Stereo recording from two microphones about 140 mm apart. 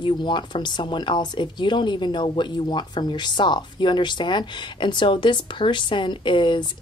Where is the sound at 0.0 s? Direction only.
35° left (ahead or behind).